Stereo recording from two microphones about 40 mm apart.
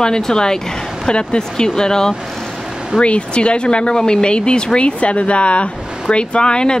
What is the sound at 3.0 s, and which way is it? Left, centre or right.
Speech, left.